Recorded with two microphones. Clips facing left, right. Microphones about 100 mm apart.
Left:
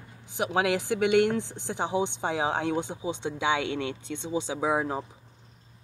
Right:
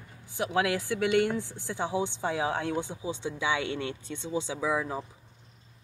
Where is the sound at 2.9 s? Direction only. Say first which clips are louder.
Left 3 dB; 35° left (ahead or behind).